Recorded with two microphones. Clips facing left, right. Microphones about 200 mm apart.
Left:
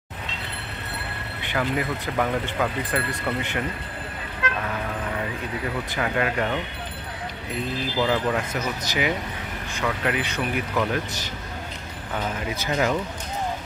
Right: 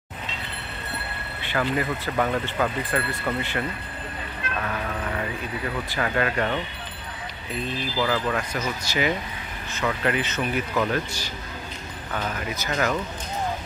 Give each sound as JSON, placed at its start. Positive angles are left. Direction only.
{"t": 1.6, "sound": "speech", "side_deg": 10}
{"t": 4.4, "sound": "vehicle", "side_deg": 90}
{"t": 5.9, "sound": "speech", "side_deg": 10}
{"t": 8.0, "sound": "speech", "side_deg": 20}
{"t": 12.6, "sound": "speech", "side_deg": 15}